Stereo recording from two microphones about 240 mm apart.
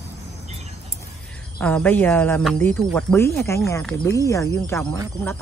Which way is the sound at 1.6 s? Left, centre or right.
Centre.